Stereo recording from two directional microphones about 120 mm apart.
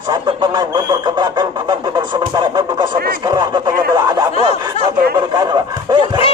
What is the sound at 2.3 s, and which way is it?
Speech, 35° right (ahead or behind).